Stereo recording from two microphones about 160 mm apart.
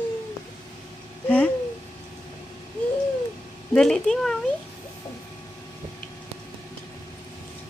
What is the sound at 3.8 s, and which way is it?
Speech, 5° left (ahead or behind).